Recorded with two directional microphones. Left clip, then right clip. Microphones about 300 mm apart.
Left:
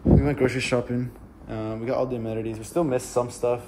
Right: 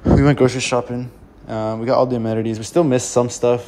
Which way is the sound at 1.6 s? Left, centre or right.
Right.